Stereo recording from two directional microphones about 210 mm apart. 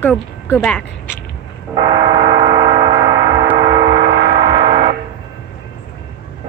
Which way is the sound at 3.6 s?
25° right (ahead or behind).